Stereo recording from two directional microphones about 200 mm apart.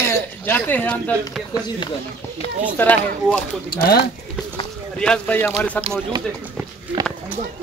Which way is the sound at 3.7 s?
50° left (ahead or behind).